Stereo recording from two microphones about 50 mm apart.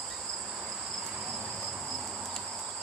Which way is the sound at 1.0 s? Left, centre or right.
Centre.